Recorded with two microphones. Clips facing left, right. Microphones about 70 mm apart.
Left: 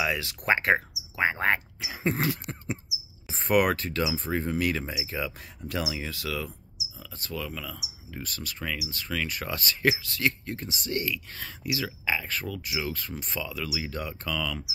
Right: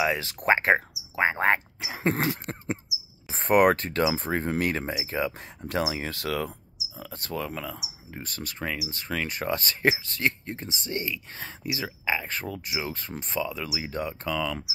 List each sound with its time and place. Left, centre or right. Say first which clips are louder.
0.0 s speech: right 3 dB; right